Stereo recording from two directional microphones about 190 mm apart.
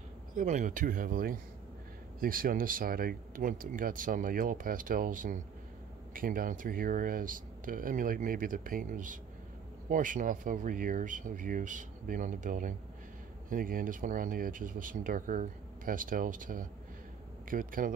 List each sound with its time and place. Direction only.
0.4 s speech: 40° right (ahead or behind)